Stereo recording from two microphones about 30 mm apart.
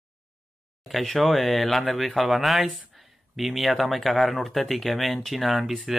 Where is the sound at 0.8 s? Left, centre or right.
Centre.